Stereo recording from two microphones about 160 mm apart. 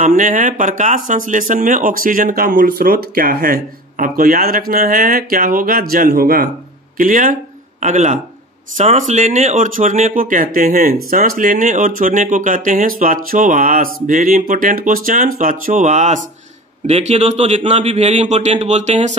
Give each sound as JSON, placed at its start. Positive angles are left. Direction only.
{"t": 0.0, "sound": "speech", "side_deg": -55}